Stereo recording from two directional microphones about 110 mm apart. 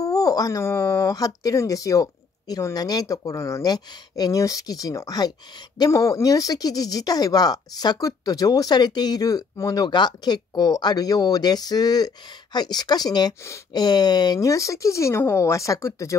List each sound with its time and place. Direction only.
0.0 s speech: 30° left (ahead or behind)